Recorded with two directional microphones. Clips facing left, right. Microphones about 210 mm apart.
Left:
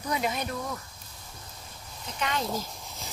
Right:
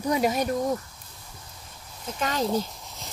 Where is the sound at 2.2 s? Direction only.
40° right (ahead or behind).